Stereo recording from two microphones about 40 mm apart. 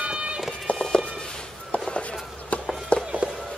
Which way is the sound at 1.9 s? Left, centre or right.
Left.